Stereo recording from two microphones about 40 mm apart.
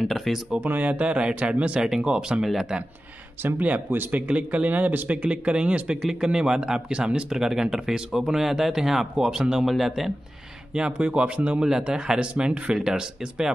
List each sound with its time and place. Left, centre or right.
0.1 s speech: centre
0.7 s speech: right
3.4 s speech: right
4.3 s speech: right
5.0 s speech: right
6.0 s speech: centre
10.7 s speech: right
11.6 s speech: centre